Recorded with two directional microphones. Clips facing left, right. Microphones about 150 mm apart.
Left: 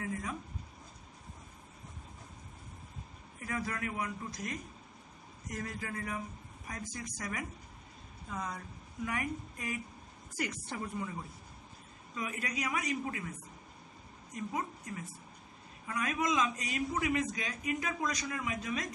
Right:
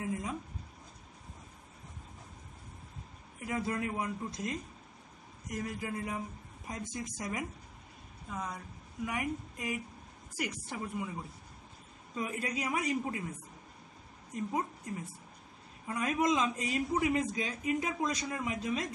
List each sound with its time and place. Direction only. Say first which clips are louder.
0.0 s speech: right 2 dB; 20° right (ahead or behind)
3.3 s a man's voice: right 3 dB; 20° right (ahead or behind)
5.5 s a man's voice: right 3 dB; 10° right (ahead or behind)
8.3 s a woman's voice: even; 5° right (ahead or behind)
12.2 s a man's voice: right 2 dB; 25° right (ahead or behind)
14.3 s a woman's voice: right 3 dB; 30° right (ahead or behind)